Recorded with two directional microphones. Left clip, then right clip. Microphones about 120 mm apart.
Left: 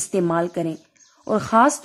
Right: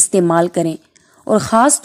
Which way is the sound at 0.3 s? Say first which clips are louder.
Right 8 dB; 40° right (ahead or behind).